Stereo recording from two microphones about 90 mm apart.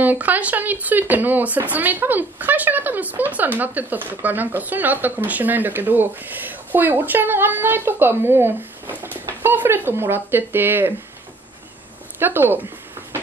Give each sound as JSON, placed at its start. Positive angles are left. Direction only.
{"t": 0.0, "sound": "speech", "side_deg": -20}
{"t": 12.2, "sound": "speech", "side_deg": -25}